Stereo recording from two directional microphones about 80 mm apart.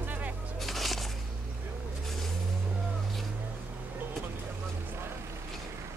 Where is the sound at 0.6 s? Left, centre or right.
Centre.